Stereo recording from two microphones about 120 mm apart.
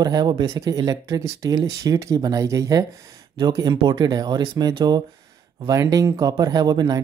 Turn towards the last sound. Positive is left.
turn(degrees=-30)  # may be behind; listen again after turning